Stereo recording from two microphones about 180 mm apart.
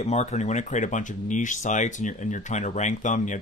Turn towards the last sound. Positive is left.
turn(degrees=45)  # may be behind; listen again after turning